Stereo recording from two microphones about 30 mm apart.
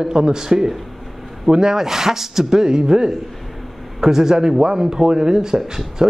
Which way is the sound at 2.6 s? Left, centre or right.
Right.